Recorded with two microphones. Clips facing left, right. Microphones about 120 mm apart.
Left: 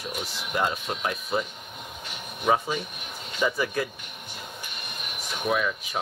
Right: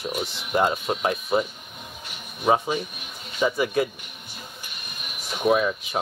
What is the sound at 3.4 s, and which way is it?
Speech, 20° right (ahead or behind).